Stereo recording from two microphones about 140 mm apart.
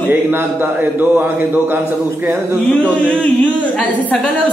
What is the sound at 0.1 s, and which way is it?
A man's voice, 15° right (ahead or behind).